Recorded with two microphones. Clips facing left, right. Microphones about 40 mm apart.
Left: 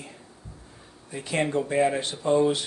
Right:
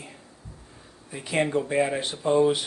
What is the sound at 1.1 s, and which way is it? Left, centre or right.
Speech, centre.